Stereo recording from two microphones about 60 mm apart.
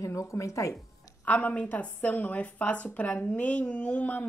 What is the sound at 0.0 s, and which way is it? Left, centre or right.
Speech, left.